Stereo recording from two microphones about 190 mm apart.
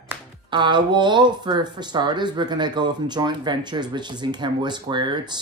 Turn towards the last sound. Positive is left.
turn(degrees=-25)  # may be behind; listen again after turning